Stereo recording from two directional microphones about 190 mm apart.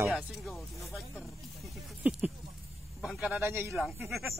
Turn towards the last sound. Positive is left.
turn(degrees=0)  # may be behind; listen again after turning